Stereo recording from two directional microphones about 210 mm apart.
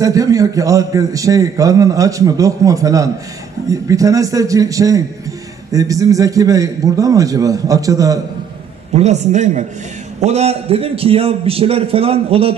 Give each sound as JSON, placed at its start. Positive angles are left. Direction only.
{"t": 0.0, "sound": "a man's voice", "side_deg": -15}
{"t": 8.9, "sound": "a man's voice", "side_deg": -30}